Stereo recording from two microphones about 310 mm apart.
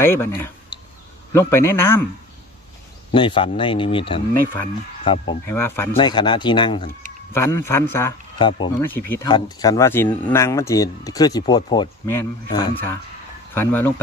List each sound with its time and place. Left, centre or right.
0.0 s a man's voice: centre
3.1 s a man's voice: centre